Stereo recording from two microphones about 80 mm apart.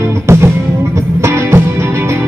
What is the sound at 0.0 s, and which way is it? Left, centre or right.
Music, right.